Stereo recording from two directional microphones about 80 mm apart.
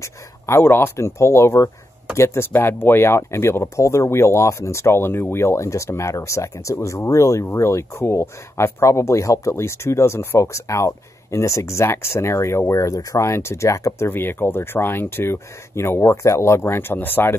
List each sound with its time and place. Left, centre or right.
0.0 s speech: left